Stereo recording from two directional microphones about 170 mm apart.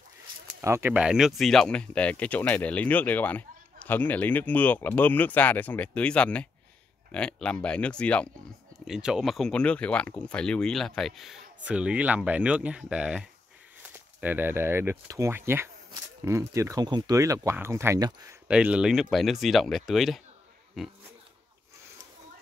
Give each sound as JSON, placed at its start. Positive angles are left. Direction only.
{"t": 0.6, "sound": "speech", "side_deg": -15}
{"t": 18.5, "sound": "speech", "side_deg": -5}